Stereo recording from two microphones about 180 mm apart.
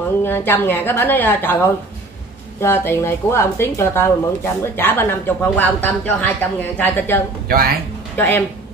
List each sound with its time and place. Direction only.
0.2 s speech: 10° left (ahead or behind)
2.6 s speech: 15° left (ahead or behind)
7.4 s speech: 55° right (ahead or behind)
8.2 s speech: 10° left (ahead or behind)